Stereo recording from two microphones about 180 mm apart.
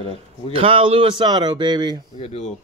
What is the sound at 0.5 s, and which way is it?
Speech, 30° right (ahead or behind).